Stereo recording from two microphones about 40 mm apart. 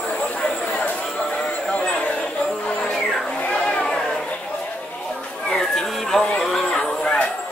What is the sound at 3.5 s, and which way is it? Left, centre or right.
Vehicle, centre.